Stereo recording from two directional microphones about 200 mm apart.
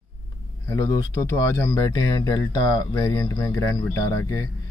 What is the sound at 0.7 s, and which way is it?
Speech, 15° left (ahead or behind).